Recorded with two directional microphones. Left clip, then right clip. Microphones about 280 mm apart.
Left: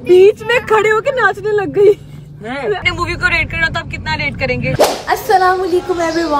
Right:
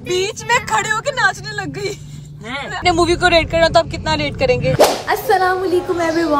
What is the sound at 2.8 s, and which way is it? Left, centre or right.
Speech, centre.